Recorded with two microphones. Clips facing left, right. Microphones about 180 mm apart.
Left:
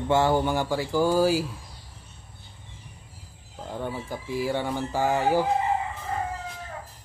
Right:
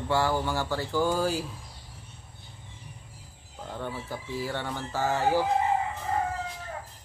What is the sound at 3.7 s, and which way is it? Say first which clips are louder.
Speech: left 3 dB; 15° left (ahead or behind).